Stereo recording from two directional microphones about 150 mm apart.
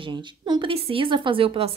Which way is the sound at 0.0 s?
30° right (ahead or behind).